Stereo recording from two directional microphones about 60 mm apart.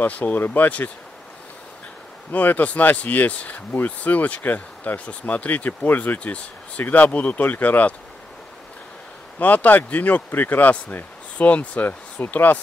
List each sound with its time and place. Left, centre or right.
0.0 s speech: left
2.3 s speech: left
9.4 s speech: left